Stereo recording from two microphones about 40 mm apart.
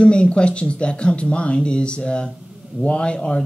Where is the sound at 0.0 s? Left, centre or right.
Left.